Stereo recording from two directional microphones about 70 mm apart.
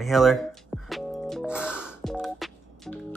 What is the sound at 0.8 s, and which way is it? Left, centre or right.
Music, centre.